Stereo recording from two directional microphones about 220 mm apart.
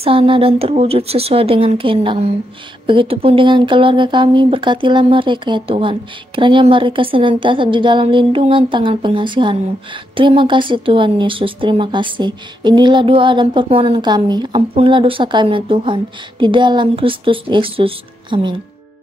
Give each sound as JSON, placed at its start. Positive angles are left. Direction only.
{"t": 0.0, "sound": "speech", "side_deg": -25}